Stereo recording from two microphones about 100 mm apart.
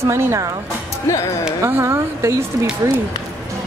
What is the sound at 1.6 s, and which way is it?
Speech, 25° right (ahead or behind).